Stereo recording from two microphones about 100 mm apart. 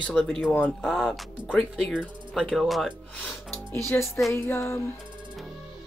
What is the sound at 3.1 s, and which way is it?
Speech, 15° left (ahead or behind).